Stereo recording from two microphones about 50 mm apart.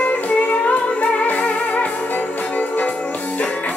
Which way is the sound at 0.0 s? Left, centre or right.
Left.